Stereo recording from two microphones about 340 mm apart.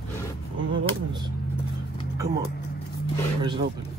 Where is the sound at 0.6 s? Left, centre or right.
Right.